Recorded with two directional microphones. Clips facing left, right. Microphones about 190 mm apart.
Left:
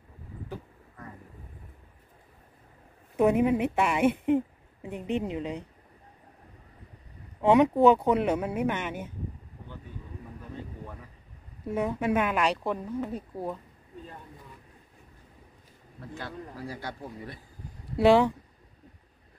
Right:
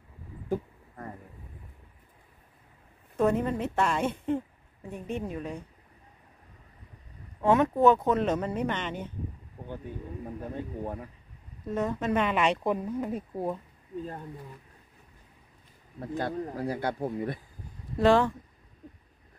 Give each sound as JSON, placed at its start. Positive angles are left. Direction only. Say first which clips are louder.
{"t": 3.2, "sound": "a woman's voice", "louder": "left 3 dB", "side_deg": 15}
{"t": 7.4, "sound": "speech", "louder": "left 2 dB", "side_deg": 15}
{"t": 10.4, "sound": "a sound", "louder": "right 7 dB", "side_deg": -50}
{"t": 11.6, "sound": "speech", "louder": "left 1 dB", "side_deg": 10}
{"t": 16.0, "sound": "speech", "louder": "right 8 dB", "side_deg": -50}
{"t": 17.9, "sound": "speech", "louder": "left 2 dB", "side_deg": 15}